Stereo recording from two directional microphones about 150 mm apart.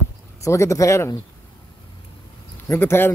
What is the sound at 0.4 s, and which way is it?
Speech, 20° left (ahead or behind).